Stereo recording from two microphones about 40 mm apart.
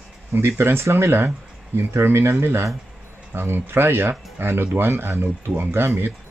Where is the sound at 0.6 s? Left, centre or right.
Right.